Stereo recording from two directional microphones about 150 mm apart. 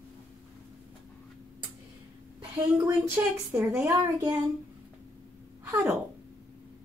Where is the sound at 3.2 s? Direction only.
15° right (ahead or behind).